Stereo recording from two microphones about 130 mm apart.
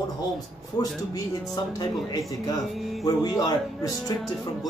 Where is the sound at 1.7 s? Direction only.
30° left (ahead or behind).